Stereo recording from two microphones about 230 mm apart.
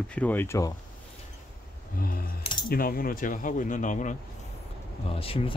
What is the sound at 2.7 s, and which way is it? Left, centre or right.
Speech, left.